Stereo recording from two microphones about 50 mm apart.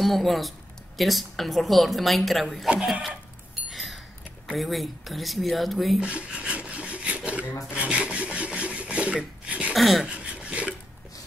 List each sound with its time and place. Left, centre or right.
0.0 s a woman's voice: centre
3.7 s a sound: centre
4.6 s a woman's voice: centre
5.9 s rub: centre
9.8 s a woman's voice: centre
10.0 s a sound: right